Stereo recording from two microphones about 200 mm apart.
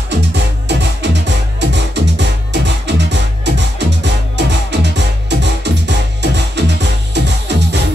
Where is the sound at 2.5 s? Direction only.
60° right (ahead or behind).